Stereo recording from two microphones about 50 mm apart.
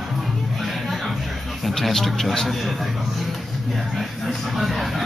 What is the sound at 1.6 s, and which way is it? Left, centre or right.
Speech, centre.